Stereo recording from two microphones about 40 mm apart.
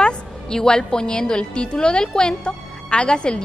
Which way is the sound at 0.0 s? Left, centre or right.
Centre.